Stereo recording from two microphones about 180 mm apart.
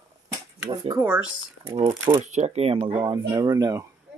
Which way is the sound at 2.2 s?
40° right (ahead or behind).